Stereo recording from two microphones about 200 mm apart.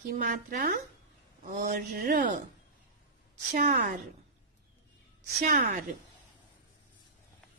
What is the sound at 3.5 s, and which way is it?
Speech, 40° right (ahead or behind).